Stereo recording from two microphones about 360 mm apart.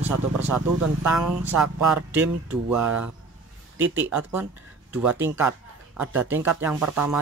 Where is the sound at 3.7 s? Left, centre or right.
Right.